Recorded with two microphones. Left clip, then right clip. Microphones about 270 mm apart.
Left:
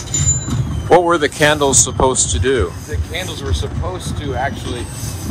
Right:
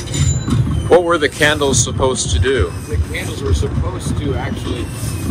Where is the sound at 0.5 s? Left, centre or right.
Centre.